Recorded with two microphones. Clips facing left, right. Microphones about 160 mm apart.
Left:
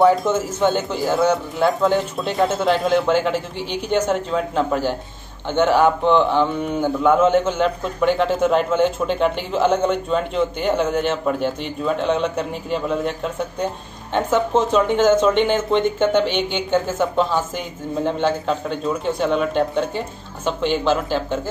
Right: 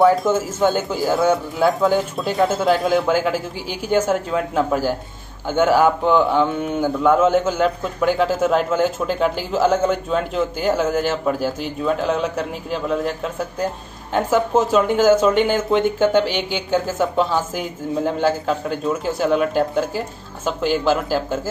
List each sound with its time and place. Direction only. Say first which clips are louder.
0.0 s speech: even; centre (ahead or behind)